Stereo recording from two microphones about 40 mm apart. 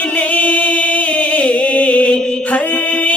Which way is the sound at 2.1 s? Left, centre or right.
Centre.